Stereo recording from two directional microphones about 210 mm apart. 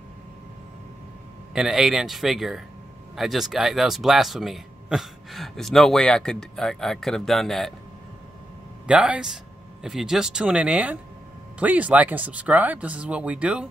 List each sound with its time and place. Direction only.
1.5 s speech: 5° right (ahead or behind)
8.8 s speech: 5° right (ahead or behind)